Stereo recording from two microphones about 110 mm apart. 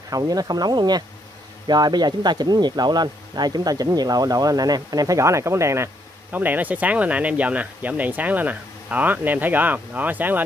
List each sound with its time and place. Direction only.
0.1 s speech: 35° right (ahead or behind); by 10.4 s 15° right (ahead or behind)